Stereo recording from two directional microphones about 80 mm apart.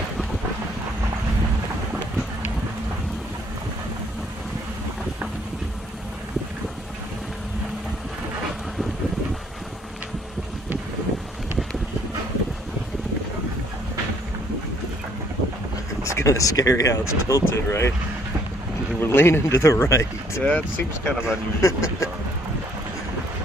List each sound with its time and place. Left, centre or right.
16.0 s speech: left
18.9 s speech: left
20.4 s speech: centre
21.5 s speech: left